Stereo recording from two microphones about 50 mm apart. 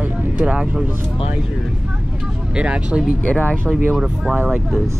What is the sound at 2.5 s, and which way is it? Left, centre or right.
Speech, right.